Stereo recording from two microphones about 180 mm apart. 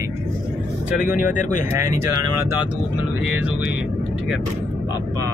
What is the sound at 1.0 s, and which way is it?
Speech, 50° left (ahead or behind).